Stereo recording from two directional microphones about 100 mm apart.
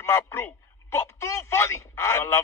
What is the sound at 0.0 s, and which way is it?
A man's voice, 25° left (ahead or behind).